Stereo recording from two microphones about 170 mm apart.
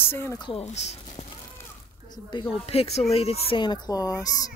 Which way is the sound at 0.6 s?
40° left (ahead or behind).